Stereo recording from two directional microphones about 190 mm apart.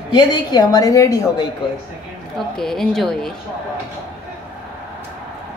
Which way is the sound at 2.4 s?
Centre (ahead or behind).